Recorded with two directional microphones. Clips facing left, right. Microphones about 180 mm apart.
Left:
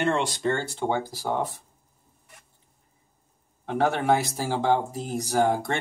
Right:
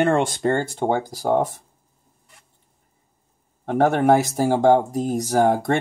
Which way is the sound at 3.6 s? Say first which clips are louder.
Right 6 dB; 50° right (ahead or behind).